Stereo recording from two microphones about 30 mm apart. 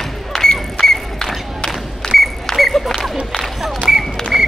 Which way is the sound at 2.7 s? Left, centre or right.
Centre.